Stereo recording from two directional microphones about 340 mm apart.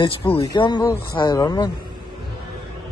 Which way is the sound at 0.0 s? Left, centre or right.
Centre.